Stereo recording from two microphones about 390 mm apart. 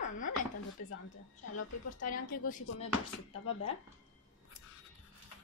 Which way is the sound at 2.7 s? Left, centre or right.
Left.